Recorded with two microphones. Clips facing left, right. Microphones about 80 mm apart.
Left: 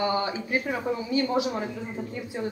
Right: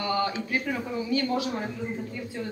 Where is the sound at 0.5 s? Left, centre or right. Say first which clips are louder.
Left 2 dB; left.